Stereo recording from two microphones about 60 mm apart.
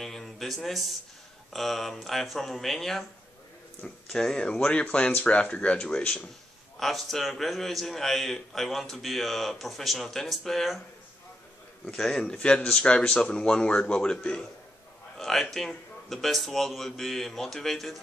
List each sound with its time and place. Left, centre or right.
0.0 s a sound: centre
1.5 s a man's voice: centre
6.8 s a man's voice: centre
11.8 s a man's voice: centre